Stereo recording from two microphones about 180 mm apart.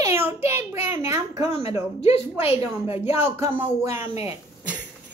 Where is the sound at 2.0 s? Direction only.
35° left (ahead or behind).